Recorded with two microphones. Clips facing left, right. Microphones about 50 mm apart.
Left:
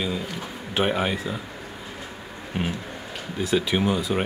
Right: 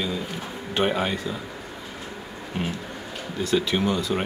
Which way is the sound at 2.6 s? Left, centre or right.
Centre.